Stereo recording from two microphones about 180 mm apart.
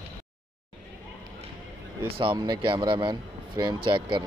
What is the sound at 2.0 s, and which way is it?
A man's voice, 30° right (ahead or behind).